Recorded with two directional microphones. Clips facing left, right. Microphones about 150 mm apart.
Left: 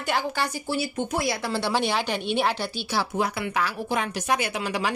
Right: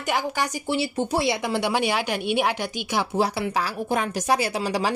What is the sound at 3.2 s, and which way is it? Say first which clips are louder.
Speech: right 4 dB; 35° right (ahead or behind).